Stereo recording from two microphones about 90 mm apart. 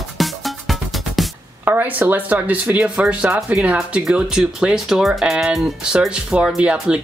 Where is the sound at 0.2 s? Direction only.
Centre (ahead or behind).